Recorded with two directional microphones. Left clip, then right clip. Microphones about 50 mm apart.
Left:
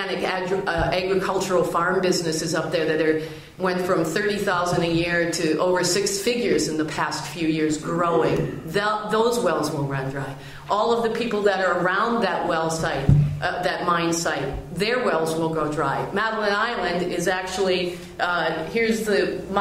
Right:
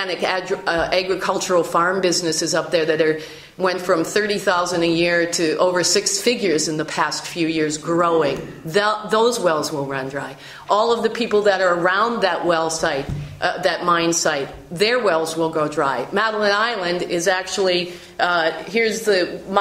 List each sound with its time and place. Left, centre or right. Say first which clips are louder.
0.2 s a woman's voice: right 3 dB; right
10.7 s a woman's voice: right 3 dB; right